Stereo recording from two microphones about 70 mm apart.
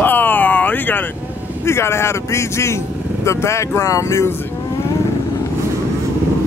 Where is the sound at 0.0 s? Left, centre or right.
Left.